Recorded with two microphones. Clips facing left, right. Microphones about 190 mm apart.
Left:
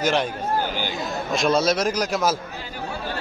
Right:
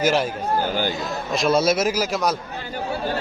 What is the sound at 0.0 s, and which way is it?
A man's voice, 5° right (ahead or behind).